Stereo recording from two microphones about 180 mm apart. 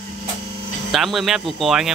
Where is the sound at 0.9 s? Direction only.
Centre (ahead or behind).